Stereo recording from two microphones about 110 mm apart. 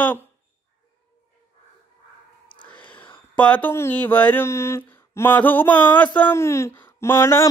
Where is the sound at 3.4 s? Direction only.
15° left (ahead or behind).